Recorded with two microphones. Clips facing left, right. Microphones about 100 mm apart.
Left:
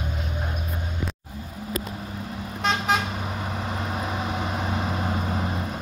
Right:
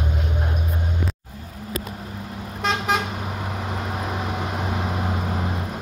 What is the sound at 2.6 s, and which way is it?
Vehicle, 5° right (ahead or behind).